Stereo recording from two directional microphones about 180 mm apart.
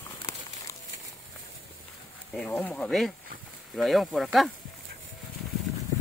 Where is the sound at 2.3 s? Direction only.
5° left (ahead or behind).